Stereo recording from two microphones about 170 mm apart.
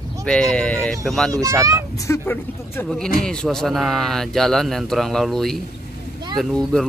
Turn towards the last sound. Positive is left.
turn(degrees=0)  # may be behind; listen again after turning